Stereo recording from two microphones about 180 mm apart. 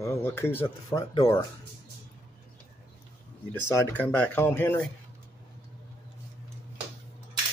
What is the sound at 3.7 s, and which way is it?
Speech, 10° left (ahead or behind).